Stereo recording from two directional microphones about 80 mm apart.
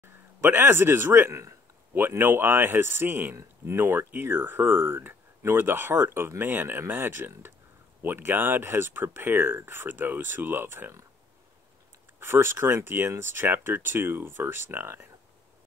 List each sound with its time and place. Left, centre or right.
0.0 s speech: right
12.2 s speech: right